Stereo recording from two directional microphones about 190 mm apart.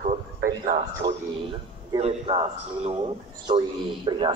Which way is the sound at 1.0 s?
20° right (ahead or behind).